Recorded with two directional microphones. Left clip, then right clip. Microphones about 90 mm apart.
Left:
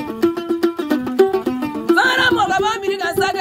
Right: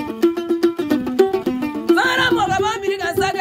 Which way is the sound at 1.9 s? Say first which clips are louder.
Left 2 dB; 5° right (ahead or behind).